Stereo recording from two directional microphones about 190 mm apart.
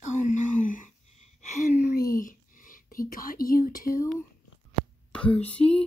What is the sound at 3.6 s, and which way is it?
Speech, 50° left (ahead or behind).